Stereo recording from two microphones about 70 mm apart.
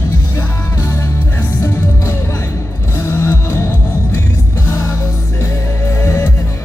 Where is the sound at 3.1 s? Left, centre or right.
Left.